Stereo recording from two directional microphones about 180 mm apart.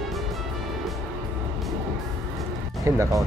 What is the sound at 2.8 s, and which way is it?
Music, 15° right (ahead or behind).